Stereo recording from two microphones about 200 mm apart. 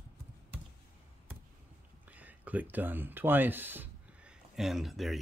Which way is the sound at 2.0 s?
10° right (ahead or behind).